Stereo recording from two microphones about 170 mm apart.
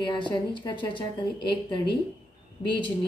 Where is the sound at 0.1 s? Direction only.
30° left (ahead or behind).